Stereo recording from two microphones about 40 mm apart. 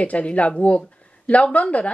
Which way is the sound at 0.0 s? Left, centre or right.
Left.